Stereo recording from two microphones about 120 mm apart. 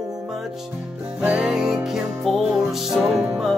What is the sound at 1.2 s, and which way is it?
Music, 10° right (ahead or behind).